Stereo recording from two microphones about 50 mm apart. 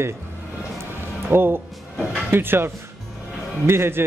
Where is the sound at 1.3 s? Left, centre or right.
Right.